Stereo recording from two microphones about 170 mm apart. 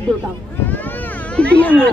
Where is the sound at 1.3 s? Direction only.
5° left (ahead or behind).